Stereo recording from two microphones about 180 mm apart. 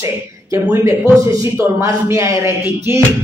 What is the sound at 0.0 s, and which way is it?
Speech, 15° right (ahead or behind).